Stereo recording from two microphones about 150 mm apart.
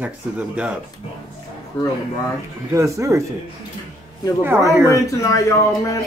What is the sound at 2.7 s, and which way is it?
Speech, 20° right (ahead or behind).